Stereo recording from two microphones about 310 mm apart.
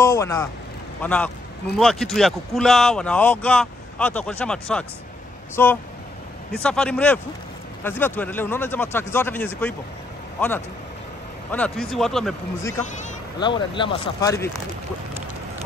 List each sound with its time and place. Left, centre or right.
0.0 s speech: centre
11.5 s speech: centre
12.8 s speech: left